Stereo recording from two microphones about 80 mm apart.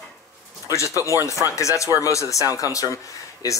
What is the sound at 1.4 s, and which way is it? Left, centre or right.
Speech, left.